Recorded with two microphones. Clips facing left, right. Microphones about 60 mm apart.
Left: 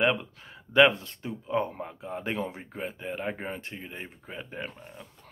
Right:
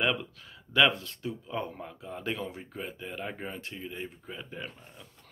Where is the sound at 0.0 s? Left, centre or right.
Left.